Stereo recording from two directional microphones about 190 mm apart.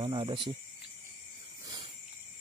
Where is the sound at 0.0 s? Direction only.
25° right (ahead or behind).